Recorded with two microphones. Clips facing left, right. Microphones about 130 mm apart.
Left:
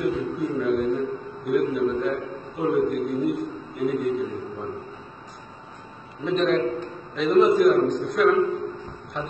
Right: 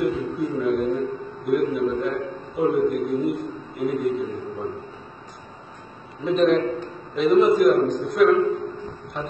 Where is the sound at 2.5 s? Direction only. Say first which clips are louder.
Right 2 dB; centre (ahead or behind).